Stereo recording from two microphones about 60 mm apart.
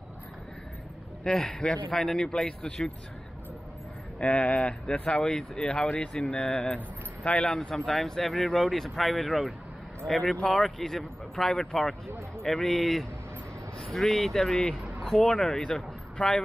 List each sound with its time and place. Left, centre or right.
1.2 s speech: centre
4.2 s speech: left